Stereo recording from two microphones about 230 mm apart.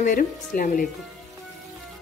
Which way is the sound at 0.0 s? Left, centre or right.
Left.